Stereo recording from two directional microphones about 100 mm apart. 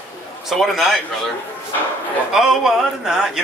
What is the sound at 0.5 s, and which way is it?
Speech, centre (ahead or behind).